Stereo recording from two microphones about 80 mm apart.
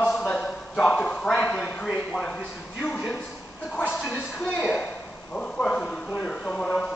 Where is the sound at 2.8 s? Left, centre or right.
Centre.